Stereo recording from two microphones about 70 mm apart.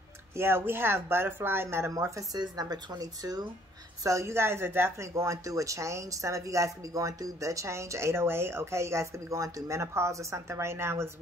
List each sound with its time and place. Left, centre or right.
0.4 s speech: right
2.3 s speech: right
4.0 s speech: right